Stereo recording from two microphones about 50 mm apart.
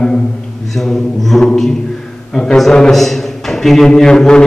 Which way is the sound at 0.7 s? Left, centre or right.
Centre.